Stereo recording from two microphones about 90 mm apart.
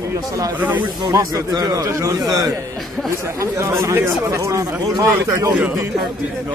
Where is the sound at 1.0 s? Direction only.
45° right (ahead or behind).